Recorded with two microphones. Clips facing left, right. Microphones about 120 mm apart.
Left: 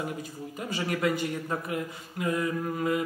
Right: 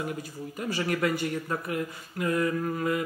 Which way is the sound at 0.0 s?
20° left (ahead or behind).